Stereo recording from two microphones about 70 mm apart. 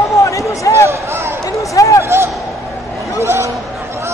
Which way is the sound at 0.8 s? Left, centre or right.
Right.